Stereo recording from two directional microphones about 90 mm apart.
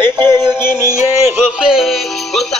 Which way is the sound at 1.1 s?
25° right (ahead or behind).